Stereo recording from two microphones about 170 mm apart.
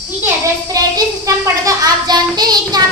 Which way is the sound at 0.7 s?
20° right (ahead or behind).